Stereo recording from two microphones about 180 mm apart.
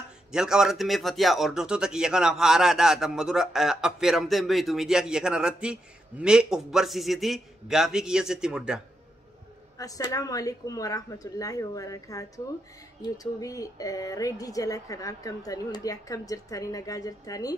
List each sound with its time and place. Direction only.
0.3 s speech: 5° right (ahead or behind)
9.8 s speech: 20° left (ahead or behind)